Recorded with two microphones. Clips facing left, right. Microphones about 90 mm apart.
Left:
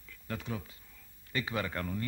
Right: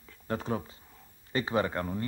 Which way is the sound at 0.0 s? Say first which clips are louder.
Right 7 dB; 35° right (ahead or behind).